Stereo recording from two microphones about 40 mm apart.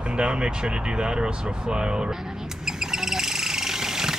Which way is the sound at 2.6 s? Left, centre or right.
Centre.